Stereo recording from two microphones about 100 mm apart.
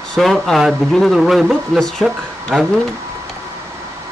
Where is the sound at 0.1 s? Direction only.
Centre (ahead or behind).